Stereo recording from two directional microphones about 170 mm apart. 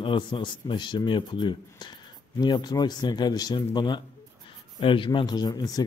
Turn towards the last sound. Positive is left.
turn(degrees=20)  # may be behind; listen again after turning